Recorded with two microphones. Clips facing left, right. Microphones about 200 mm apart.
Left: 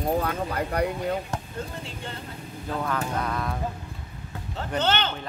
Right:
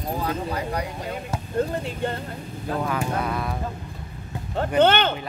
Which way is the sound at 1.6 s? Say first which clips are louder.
Right 10 dB; 55° right (ahead or behind).